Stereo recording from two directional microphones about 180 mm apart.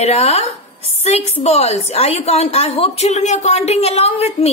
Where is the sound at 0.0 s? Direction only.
35° left (ahead or behind).